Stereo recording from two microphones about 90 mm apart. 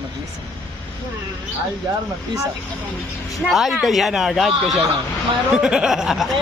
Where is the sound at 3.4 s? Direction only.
Centre (ahead or behind).